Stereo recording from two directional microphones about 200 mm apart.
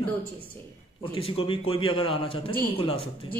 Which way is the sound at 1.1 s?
30° left (ahead or behind).